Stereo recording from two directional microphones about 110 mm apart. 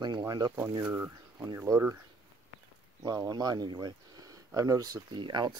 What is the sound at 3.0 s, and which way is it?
Speech, 35° right (ahead or behind).